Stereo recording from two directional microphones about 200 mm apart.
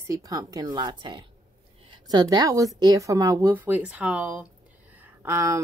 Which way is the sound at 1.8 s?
20° right (ahead or behind).